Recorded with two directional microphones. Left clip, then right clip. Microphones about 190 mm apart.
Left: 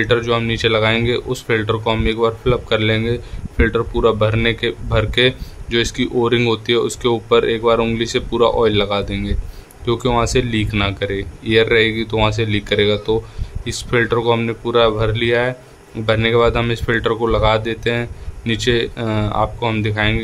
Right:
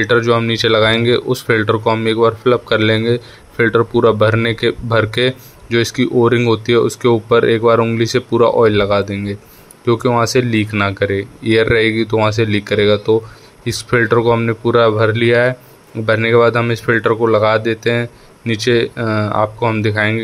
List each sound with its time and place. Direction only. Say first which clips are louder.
0.0 s a man's voice: right 4 dB; 20° right (ahead or behind)
14.3 s speech: right 3 dB; 5° right (ahead or behind)
14.6 s a man's voice: right 4 dB; 15° right (ahead or behind)